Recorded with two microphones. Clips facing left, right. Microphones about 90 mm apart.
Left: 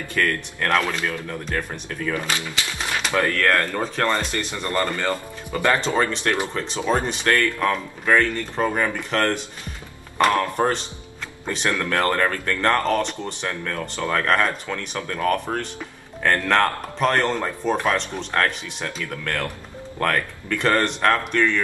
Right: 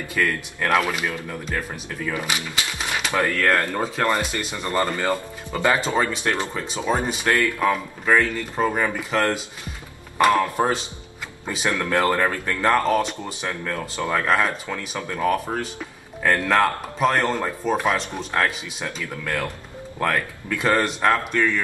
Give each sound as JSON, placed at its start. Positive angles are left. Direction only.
{"t": 0.1, "sound": "speech", "side_deg": -10}